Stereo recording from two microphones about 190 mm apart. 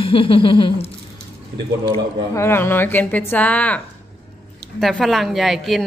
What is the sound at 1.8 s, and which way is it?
A woman's voice, 15° left (ahead or behind).